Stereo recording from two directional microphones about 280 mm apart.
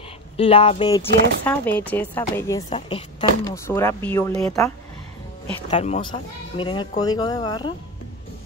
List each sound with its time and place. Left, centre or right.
0.4 s speech: centre
1.4 s a woman's voice: centre
5.7 s a woman's voice: left